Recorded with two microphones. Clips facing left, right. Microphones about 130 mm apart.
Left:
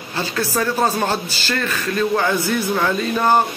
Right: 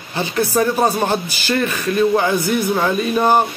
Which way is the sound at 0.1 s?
20° right (ahead or behind).